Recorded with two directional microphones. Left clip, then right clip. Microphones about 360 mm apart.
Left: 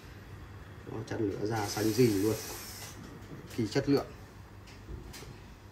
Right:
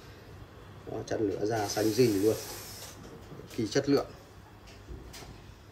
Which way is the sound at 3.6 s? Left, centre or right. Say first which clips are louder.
Right 2 dB; centre.